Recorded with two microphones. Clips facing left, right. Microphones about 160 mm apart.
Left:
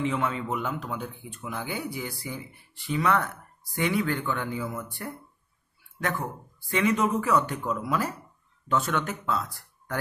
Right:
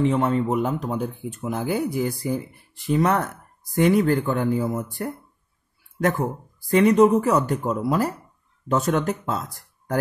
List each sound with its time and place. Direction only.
0.0 s speech: 40° right (ahead or behind)
6.7 s speech: 40° right (ahead or behind)